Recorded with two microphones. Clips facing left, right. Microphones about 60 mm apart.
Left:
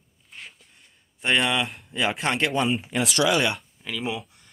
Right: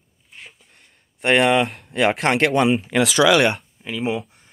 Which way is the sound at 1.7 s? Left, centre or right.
Right.